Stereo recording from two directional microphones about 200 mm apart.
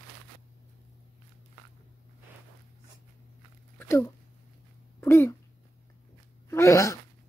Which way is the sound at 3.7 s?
10° left (ahead or behind).